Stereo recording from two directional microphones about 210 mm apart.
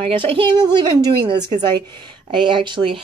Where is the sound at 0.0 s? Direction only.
25° right (ahead or behind).